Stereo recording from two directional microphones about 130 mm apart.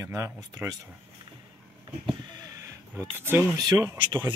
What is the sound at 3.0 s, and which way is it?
Speech, 20° right (ahead or behind).